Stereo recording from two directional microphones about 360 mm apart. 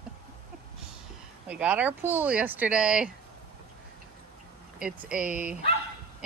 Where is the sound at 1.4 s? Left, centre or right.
Centre.